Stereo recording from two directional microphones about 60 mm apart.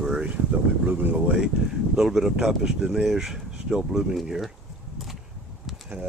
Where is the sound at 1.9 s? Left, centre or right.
Centre.